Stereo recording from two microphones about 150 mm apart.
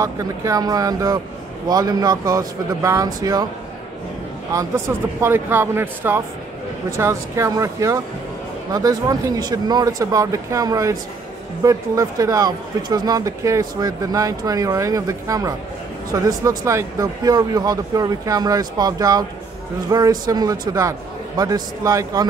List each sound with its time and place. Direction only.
0.0 s speech: 25° right (ahead or behind)
4.5 s speech: 20° right (ahead or behind)